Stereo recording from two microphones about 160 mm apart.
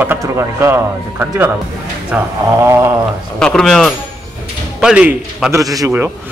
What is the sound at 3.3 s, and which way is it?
A man's voice, 5° left (ahead or behind).